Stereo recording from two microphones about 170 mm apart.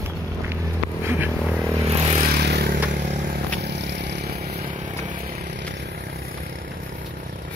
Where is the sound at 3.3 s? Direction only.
85° right.